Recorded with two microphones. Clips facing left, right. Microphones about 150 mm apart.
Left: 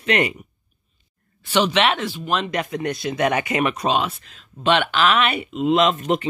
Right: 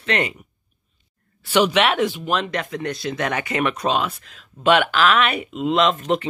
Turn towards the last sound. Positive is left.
turn(degrees=10)  # may be behind; listen again after turning